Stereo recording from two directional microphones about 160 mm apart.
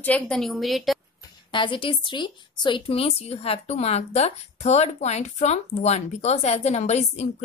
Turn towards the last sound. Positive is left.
turn(degrees=45)  # may be behind; listen again after turning